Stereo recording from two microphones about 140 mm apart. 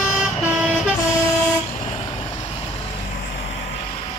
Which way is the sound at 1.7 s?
45° left (ahead or behind).